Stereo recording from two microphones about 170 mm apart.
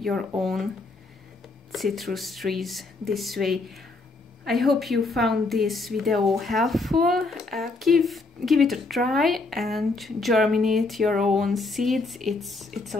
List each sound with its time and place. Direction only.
0.0 s a woman's voice: centre (ahead or behind)
1.7 s a woman's voice: centre (ahead or behind)